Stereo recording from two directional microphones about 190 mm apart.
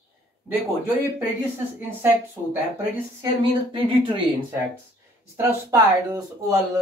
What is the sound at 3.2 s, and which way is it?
A woman's voice, 25° right (ahead or behind).